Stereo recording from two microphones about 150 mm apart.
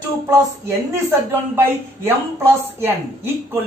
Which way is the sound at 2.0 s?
15° right (ahead or behind).